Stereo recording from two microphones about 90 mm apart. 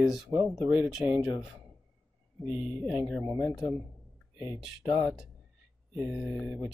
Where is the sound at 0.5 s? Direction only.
5° right (ahead or behind).